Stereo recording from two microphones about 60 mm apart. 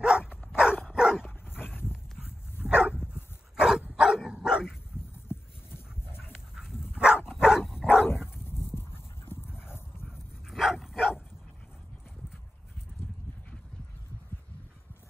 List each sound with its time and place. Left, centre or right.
0.0 s dog: centre
2.6 s dog: centre
5.3 s a sound: left
6.5 s dog: centre
8.4 s dog: left
10.0 s dog: centre